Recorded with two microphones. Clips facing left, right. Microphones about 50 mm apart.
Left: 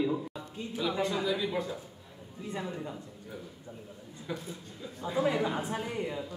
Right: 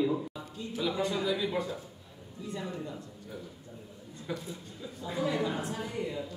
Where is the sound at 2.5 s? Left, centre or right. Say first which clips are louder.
Left 1 dB; left.